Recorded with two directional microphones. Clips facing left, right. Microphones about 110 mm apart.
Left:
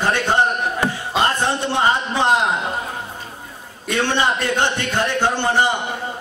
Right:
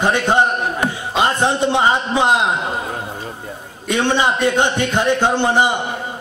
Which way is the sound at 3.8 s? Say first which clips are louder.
Right 2 dB; 15° right (ahead or behind).